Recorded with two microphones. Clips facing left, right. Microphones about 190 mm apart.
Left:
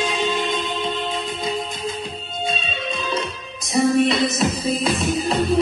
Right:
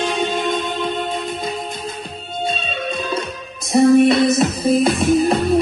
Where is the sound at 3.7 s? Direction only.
45° right (ahead or behind).